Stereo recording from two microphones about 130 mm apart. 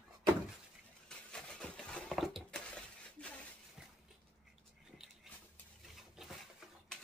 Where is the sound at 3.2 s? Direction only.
10° left (ahead or behind).